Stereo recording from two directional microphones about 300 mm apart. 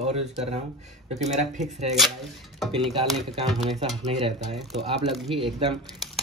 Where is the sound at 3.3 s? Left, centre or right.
Centre.